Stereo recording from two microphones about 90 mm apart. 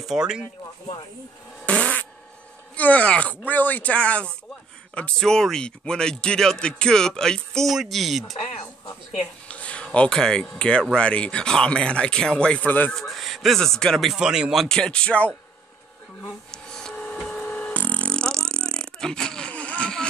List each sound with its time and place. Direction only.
0.0 s speech: 5° right (ahead or behind)
1.7 s fart: 15° left (ahead or behind)
2.7 s a man's voice: 15° left (ahead or behind); by 8.4 s centre (ahead or behind)
9.2 s a sound: 15° left (ahead or behind)
10.5 s speech: 10° left (ahead or behind)
12.9 s a man's voice: centre (ahead or behind)
16.5 s printer: 5° left (ahead or behind)
17.5 s beatboxing: 20° left (ahead or behind)